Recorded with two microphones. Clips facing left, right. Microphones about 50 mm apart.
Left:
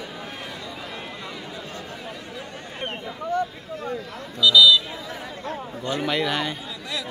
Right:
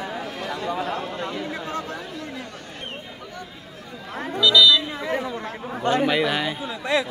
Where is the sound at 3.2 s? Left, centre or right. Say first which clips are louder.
Left 12 dB; left.